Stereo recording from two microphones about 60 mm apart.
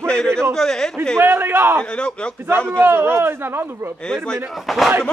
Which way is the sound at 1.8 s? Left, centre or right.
Centre.